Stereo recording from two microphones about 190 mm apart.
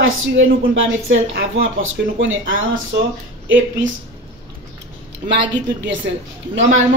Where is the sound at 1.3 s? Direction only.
90° right.